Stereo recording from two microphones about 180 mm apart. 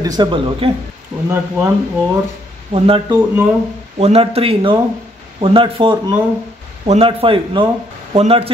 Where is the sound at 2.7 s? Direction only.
35° right (ahead or behind).